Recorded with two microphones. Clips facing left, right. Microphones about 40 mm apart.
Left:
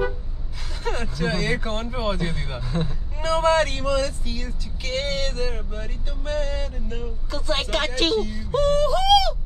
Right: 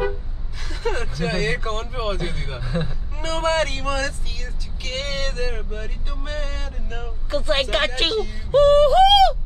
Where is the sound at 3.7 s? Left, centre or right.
Right.